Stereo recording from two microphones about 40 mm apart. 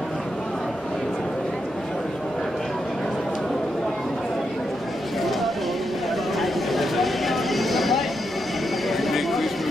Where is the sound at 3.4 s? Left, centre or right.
Centre.